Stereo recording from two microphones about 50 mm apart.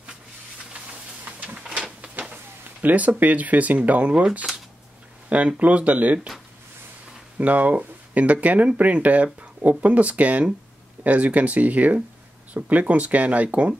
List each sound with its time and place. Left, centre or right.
1.2 s a sound: right
2.8 s speech: right
5.6 s speech: right
7.3 s speech: right